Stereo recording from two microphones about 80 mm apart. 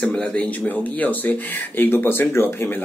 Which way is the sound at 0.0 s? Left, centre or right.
Centre.